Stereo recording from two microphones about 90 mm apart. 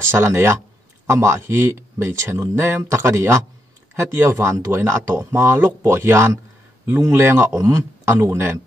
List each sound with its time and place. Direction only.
0.1 s speech: 30° right (ahead or behind)